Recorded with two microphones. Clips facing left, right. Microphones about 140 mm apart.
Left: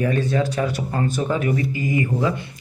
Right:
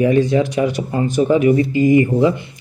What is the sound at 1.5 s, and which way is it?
Speech, 25° right (ahead or behind).